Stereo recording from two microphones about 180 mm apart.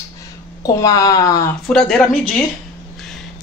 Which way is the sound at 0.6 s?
20° left (ahead or behind).